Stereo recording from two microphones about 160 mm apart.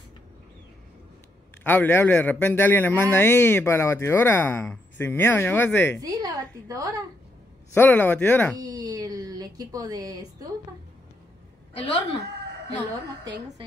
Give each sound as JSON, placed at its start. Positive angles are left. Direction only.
{"t": 1.6, "sound": "a man's voice", "side_deg": 10}
{"t": 5.9, "sound": "a woman's voice", "side_deg": -20}
{"t": 7.7, "sound": "a man's voice", "side_deg": 10}
{"t": 8.5, "sound": "speech", "side_deg": -25}
{"t": 11.7, "sound": "a woman's voice", "side_deg": 40}